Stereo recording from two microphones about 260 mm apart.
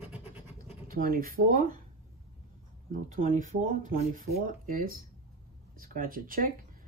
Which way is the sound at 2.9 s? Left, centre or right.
Right.